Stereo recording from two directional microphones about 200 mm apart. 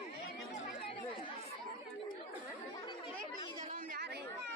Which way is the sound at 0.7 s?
30° left (ahead or behind).